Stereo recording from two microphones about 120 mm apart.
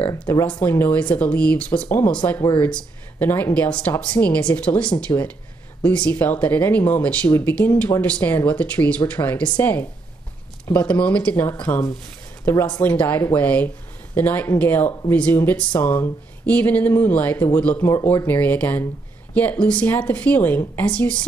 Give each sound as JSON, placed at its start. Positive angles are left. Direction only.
{"t": 0.5, "sound": "speech", "side_deg": 15}
{"t": 12.5, "sound": "speech", "side_deg": 15}